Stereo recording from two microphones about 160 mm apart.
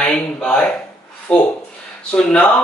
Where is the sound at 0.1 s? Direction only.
5° left (ahead or behind).